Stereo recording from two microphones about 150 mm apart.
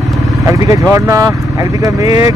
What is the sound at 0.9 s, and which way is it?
Speech, 20° right (ahead or behind).